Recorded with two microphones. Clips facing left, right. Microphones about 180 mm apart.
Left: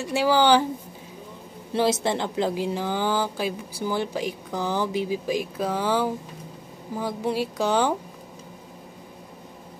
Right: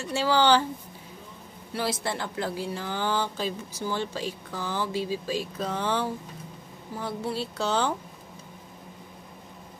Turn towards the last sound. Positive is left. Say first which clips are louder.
# left 4 dB
turn(degrees=15)  # may be behind; listen again after turning